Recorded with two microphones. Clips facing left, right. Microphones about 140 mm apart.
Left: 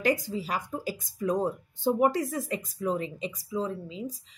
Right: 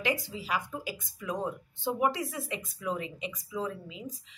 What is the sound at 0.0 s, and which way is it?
Speech, 45° left (ahead or behind).